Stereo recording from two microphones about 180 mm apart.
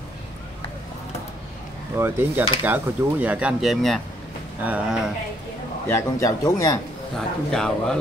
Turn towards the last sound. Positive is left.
turn(degrees=5)  # may be behind; listen again after turning